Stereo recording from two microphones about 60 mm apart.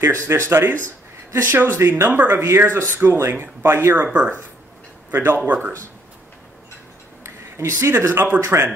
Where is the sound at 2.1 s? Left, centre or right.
Right.